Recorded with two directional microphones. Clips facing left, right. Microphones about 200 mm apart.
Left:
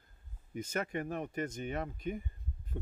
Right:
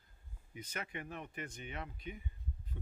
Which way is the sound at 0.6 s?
45° left (ahead or behind).